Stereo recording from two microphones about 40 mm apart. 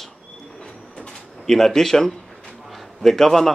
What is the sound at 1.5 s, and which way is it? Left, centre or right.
A man's voice, centre.